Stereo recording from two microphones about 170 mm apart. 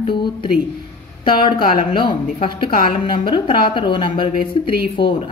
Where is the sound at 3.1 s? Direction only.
30° left (ahead or behind).